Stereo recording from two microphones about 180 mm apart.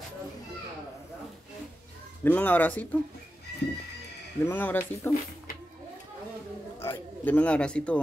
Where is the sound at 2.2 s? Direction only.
10° left (ahead or behind).